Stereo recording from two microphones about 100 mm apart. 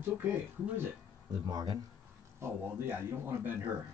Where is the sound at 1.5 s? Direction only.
40° right (ahead or behind).